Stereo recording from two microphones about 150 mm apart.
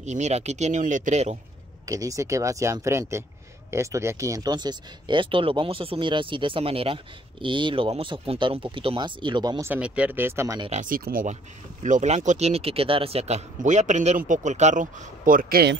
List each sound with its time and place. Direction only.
0.0 s speech: 50° right (ahead or behind)
1.9 s speech: 20° right (ahead or behind)
9.7 s speech: 10° right (ahead or behind)
10.7 s speech: 65° right (ahead or behind)
11.8 s speech: 55° right (ahead or behind); by 15.7 s 80° right